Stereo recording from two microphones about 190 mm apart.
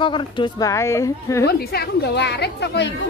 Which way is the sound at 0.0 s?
25° left (ahead or behind).